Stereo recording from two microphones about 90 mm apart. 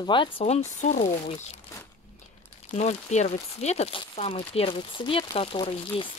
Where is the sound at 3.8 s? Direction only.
85° left.